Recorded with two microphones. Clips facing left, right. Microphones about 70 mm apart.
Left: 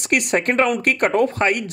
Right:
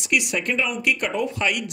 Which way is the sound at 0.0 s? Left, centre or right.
Left.